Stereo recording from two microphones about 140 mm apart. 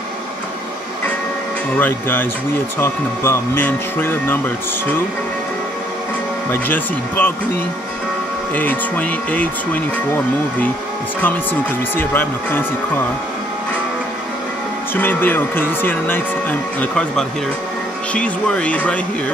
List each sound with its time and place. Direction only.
1.8 s speech: 10° left (ahead or behind)
6.5 s speech: 15° left (ahead or behind)
12.0 s speech: 15° left (ahead or behind)
15.0 s speech: 15° left (ahead or behind)